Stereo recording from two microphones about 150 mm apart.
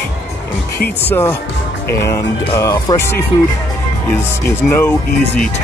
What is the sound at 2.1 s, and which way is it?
Speech, 20° left (ahead or behind).